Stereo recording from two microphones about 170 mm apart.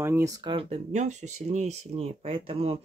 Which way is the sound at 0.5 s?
40° right (ahead or behind).